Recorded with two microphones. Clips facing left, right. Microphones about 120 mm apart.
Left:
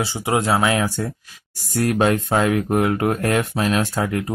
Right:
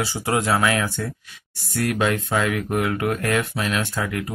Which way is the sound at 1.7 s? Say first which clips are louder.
Left 4 dB; 35° left (ahead or behind).